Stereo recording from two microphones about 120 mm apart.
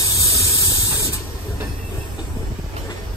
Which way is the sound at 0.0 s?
25° left (ahead or behind).